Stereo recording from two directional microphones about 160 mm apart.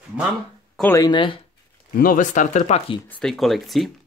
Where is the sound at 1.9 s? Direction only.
60° left (ahead or behind).